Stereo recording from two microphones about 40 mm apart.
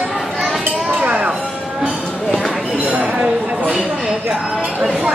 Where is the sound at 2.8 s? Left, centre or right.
Right.